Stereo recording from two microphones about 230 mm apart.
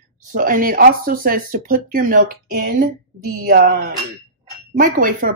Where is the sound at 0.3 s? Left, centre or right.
Right.